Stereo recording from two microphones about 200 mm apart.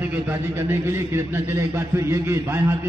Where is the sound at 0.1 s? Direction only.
10° right (ahead or behind).